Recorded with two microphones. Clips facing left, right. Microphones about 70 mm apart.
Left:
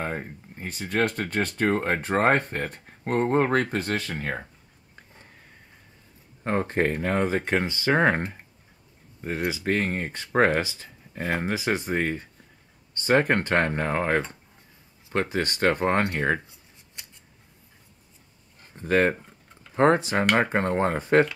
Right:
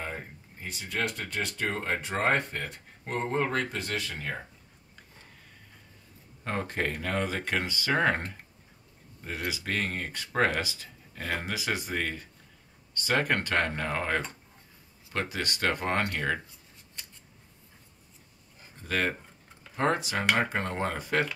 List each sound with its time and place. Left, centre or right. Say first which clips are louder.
0.6 s speech: left 7 dB; left
6.4 s speech: left 7 dB; left
18.8 s speech: left 8 dB; left